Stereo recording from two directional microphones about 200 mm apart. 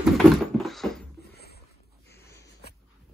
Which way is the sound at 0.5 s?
Centre (ahead or behind).